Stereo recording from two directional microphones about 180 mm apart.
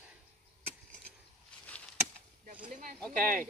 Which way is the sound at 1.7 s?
5° left (ahead or behind).